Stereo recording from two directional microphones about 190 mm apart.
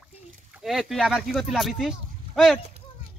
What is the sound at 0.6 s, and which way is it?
Speech, centre (ahead or behind).